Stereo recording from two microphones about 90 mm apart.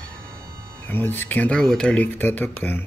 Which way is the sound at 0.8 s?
20° left (ahead or behind).